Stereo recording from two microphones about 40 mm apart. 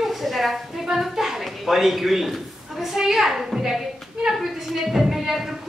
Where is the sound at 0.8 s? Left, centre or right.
Centre.